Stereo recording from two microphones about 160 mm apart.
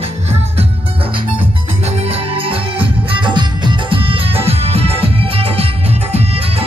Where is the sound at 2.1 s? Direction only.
35° right (ahead or behind).